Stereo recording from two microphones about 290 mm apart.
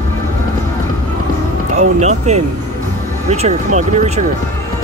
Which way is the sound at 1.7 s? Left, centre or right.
Right.